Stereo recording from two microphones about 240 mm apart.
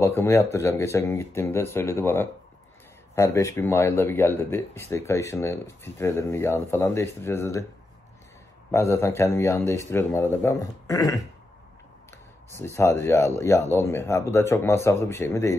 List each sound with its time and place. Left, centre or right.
0.0 s speech: centre
8.7 s speech: centre